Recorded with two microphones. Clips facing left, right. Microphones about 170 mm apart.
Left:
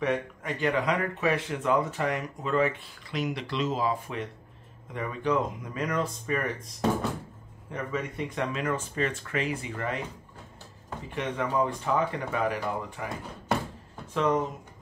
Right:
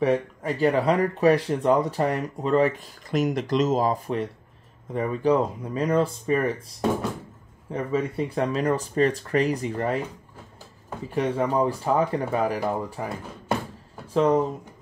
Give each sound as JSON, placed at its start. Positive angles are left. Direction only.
{"t": 0.0, "sound": "speech", "side_deg": -35}
{"t": 7.7, "sound": "speech", "side_deg": -30}
{"t": 11.1, "sound": "speech", "side_deg": -35}
{"t": 14.1, "sound": "speech", "side_deg": -35}